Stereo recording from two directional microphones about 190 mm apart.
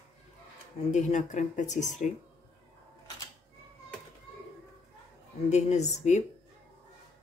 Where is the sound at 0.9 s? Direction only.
40° left (ahead or behind).